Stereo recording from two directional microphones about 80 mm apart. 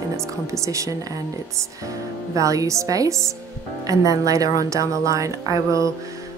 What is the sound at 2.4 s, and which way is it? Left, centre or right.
A woman's voice, right.